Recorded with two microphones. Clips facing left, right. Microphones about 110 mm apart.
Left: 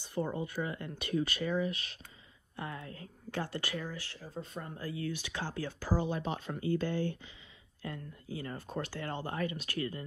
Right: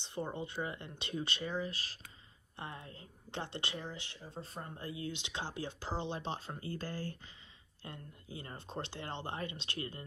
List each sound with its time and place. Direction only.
0.0 s speech: 25° right (ahead or behind)
7.8 s speech: 25° right (ahead or behind)